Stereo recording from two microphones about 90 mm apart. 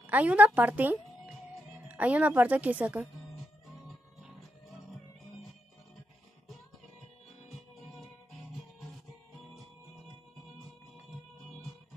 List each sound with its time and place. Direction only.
0.0 s speech: 15° right (ahead or behind)
7.4 s music: centre (ahead or behind)